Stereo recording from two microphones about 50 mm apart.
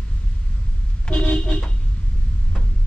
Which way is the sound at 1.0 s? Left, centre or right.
Left.